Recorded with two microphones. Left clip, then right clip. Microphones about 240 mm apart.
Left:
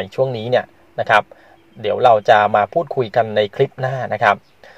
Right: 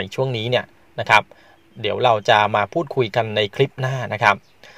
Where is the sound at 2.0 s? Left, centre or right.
Right.